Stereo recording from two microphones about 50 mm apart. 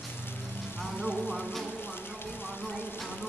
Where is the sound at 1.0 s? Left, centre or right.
Centre.